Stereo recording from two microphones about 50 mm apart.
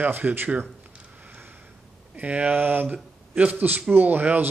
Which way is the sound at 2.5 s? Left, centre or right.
Right.